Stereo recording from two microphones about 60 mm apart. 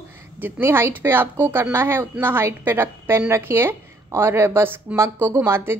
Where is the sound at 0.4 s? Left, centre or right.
Right.